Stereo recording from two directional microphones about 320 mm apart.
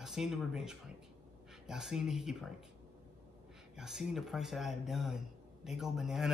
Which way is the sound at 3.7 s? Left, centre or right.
Centre.